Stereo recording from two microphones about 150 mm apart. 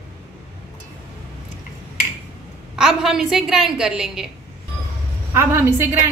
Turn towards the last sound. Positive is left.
turn(degrees=-15)  # may be behind; listen again after turning